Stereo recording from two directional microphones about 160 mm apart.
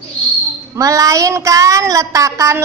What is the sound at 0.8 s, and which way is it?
Child singing, 20° right (ahead or behind).